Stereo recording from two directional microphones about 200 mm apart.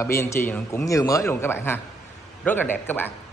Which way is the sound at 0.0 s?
15° left (ahead or behind).